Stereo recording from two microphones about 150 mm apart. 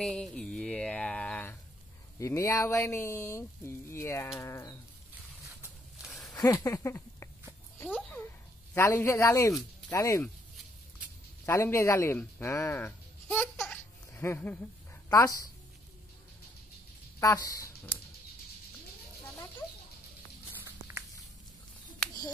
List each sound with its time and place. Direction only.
0.0 s a sound: 5° left (ahead or behind)
2.1 s speech: 20° left (ahead or behind)
6.0 s a sound: centre (ahead or behind)
6.3 s speech: 20° left (ahead or behind)
8.7 s speech: 20° left (ahead or behind)
11.4 s speech: 20° left (ahead or behind)
15.0 s a woman's voice: 25° left (ahead or behind)
17.2 s speech: 20° left (ahead or behind)